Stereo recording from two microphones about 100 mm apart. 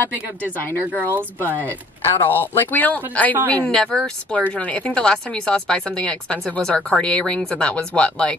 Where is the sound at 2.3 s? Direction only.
20° left (ahead or behind).